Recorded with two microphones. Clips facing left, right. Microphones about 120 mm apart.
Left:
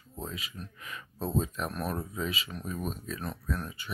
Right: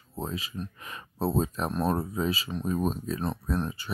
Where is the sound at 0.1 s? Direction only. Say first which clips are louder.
Right 6 dB; 35° right (ahead or behind).